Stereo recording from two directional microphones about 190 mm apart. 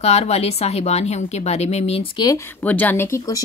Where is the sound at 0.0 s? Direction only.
35° left (ahead or behind).